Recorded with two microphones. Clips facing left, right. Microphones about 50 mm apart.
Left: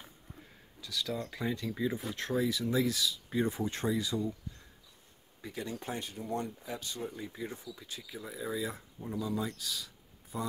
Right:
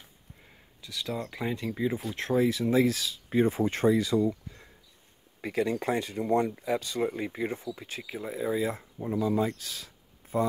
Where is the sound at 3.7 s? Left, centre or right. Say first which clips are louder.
Right 8 dB; right.